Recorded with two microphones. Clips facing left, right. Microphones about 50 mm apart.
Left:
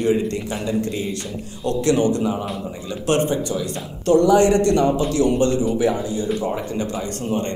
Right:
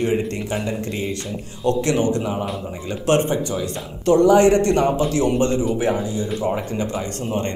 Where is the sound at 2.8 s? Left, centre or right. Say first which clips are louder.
Right 1 dB; right.